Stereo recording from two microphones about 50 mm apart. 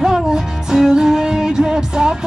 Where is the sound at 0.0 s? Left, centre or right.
Centre.